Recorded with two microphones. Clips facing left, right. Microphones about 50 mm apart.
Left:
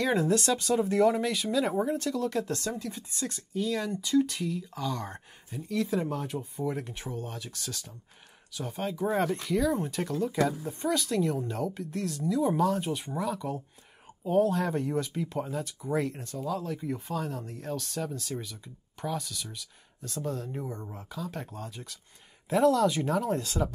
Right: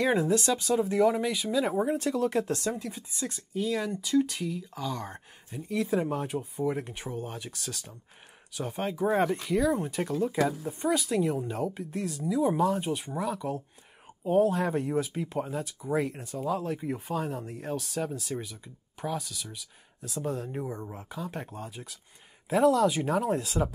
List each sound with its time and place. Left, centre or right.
0.0 s speech: centre
1.9 s speech: right
7.5 s speech: centre
8.5 s speech: right
16.3 s speech: right; by 20.2 s centre
20.2 s speech: centre